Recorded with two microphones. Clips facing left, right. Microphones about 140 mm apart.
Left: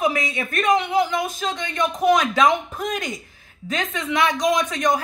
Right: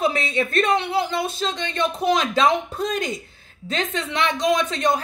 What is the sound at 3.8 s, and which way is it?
Speech, 10° left (ahead or behind).